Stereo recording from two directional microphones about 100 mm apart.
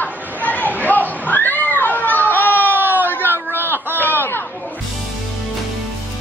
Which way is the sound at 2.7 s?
20° right (ahead or behind).